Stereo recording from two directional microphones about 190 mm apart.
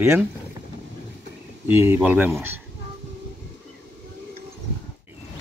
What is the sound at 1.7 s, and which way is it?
Speech, 10° right (ahead or behind).